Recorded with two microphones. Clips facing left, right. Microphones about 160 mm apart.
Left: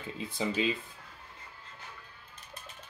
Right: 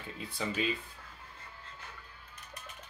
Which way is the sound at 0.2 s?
20° left (ahead or behind).